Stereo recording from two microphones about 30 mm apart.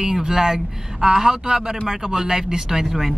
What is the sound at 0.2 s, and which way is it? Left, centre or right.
Speech, centre.